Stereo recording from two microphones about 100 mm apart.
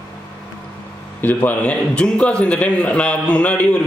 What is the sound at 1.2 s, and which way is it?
A man's voice, 20° left (ahead or behind).